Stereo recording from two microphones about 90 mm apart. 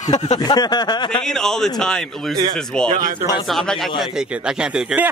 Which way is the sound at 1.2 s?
5° left (ahead or behind).